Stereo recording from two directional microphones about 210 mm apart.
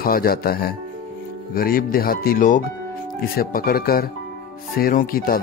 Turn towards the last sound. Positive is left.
turn(degrees=45)  # may be behind; listen again after turning